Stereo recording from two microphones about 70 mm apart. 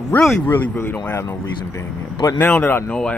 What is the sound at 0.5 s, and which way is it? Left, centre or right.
Speech, left.